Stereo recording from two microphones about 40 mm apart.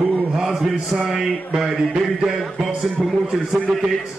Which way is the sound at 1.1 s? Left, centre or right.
Centre.